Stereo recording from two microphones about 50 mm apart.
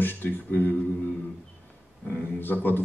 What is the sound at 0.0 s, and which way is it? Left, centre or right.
Speech, left.